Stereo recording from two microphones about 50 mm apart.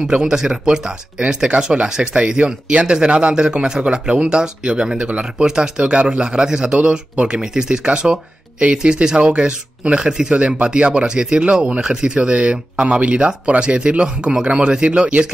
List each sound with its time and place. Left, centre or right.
0.0 s speech: centre